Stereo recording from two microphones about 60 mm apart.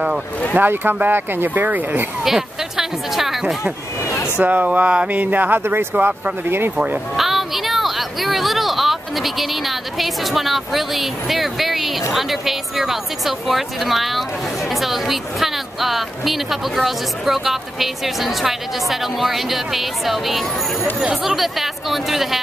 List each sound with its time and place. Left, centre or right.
0.6 s speech: right
2.2 s speech: centre
4.0 s a sound: left
4.5 s speech: right
5.6 s speech: right
5.9 s speech: right
7.2 s speech: centre